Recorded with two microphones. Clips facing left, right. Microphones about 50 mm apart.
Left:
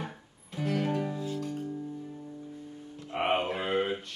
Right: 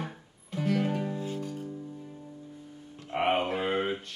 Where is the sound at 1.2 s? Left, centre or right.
Right.